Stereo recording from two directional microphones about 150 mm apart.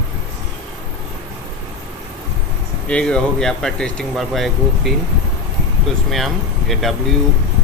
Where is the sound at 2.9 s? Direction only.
5° left (ahead or behind).